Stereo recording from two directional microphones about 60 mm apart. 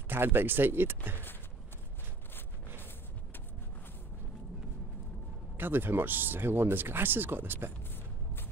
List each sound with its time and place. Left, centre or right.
0.1 s speech: right
5.6 s speech: right